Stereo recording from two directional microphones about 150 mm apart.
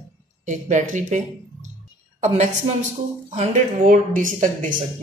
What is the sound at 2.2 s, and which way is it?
Speech, 50° right (ahead or behind).